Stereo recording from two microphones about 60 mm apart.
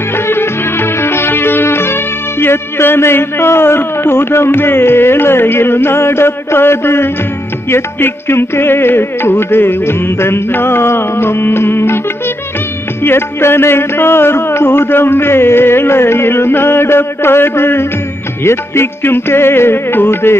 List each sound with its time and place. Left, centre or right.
0.3 s music: left
13.0 s music: left